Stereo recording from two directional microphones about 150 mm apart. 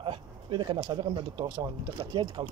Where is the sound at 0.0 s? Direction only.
35° right (ahead or behind).